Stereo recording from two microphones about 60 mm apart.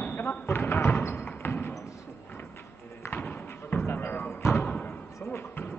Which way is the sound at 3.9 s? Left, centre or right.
Left.